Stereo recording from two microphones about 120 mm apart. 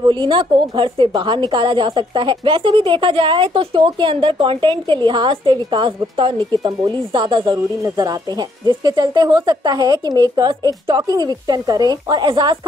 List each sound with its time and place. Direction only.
0.0 s a woman's voice: 40° right (ahead or behind)